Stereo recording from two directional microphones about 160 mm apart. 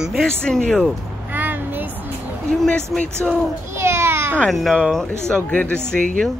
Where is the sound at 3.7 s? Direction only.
15° right (ahead or behind).